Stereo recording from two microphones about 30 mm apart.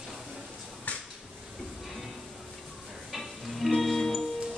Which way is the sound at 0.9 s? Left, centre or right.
Left.